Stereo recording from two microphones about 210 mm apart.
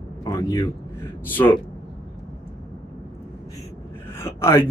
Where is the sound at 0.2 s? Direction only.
15° left (ahead or behind).